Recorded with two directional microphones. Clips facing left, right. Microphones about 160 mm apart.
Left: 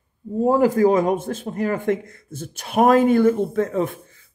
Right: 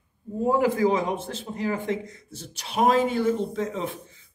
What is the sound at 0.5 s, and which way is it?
Speech, 40° left (ahead or behind).